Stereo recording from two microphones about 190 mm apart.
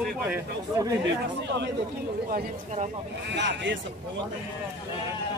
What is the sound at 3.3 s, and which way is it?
Speech, 70° right (ahead or behind).